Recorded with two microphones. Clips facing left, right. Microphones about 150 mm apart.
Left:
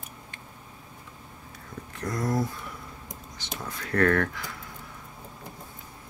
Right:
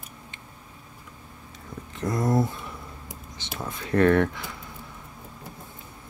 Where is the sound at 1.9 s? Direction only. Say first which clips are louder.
Right 4 dB; 25° right (ahead or behind).